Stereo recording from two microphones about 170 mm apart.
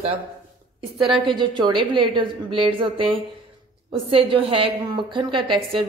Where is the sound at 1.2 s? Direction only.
30° right (ahead or behind).